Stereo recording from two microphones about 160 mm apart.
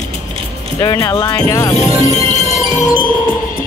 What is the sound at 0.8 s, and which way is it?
Speech, 25° left (ahead or behind).